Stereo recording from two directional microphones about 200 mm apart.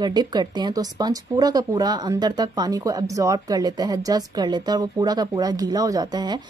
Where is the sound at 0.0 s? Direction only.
20° right (ahead or behind).